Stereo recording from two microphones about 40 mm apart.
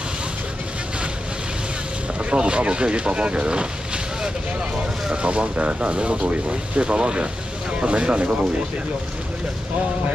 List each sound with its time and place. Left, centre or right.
2.1 s speech: right